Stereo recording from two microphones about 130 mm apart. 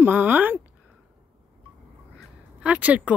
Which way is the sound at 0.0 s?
15° right (ahead or behind).